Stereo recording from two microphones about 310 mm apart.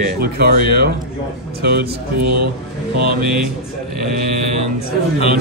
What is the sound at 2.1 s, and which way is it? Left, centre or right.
Speech, right.